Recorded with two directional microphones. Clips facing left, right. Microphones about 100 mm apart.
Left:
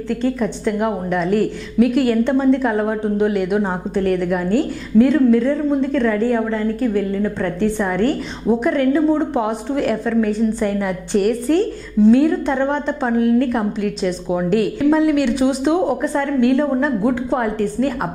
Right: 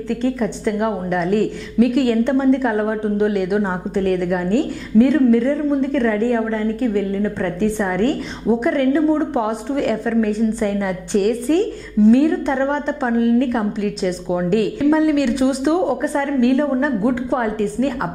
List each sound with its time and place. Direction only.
0.4 s a woman's voice: 20° left (ahead or behind)